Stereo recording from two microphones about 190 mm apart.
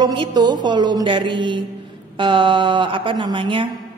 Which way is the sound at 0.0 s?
25° right (ahead or behind).